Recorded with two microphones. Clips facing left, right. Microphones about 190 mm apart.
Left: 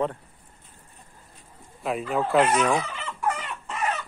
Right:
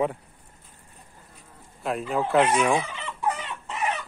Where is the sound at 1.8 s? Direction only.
Centre (ahead or behind).